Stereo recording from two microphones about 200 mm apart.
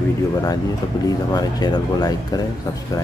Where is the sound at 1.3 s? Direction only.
20° left (ahead or behind).